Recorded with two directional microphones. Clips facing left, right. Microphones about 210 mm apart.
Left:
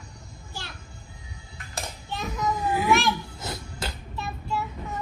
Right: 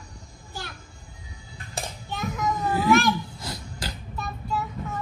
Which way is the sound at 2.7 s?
15° left (ahead or behind).